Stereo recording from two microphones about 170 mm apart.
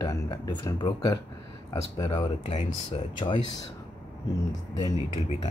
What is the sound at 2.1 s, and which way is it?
Speech, 35° left (ahead or behind).